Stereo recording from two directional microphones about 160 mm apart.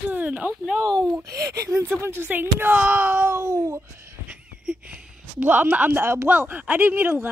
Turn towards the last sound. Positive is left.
turn(degrees=-15)  # may be behind; listen again after turning